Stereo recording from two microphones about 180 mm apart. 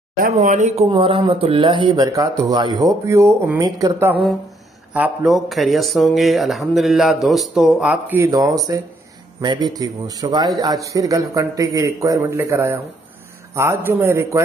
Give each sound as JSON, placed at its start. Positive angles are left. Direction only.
{"t": 0.1, "sound": "a man's voice", "side_deg": -50}
{"t": 4.9, "sound": "speech", "side_deg": -5}
{"t": 8.3, "sound": "a man's voice", "side_deg": -20}